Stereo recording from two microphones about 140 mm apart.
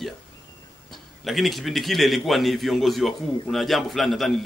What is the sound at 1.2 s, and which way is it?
A man's voice, centre (ahead or behind).